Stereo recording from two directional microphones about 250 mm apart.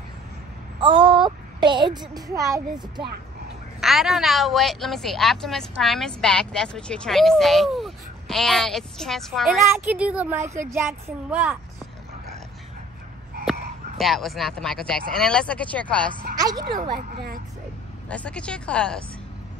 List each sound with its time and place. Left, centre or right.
0.7 s speech: centre
3.8 s a woman's voice: centre
13.5 s speech: centre
16.3 s speech: centre
16.9 s speech: right
18.0 s a woman's voice: centre